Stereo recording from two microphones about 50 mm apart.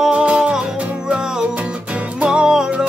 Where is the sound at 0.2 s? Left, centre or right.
Right.